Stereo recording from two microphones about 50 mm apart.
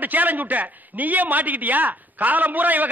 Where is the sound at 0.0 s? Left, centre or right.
Right.